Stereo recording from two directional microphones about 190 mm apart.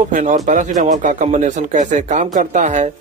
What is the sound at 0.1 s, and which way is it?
Speech, 40° right (ahead or behind).